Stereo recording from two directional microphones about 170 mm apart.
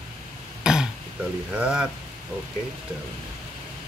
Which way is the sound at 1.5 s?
5° right (ahead or behind).